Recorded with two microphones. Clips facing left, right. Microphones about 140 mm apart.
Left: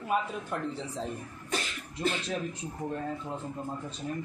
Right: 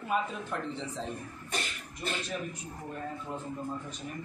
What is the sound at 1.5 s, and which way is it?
Cough, 90° left.